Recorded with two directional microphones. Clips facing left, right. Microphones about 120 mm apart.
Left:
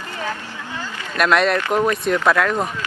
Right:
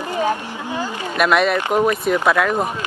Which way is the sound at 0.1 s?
20° right (ahead or behind).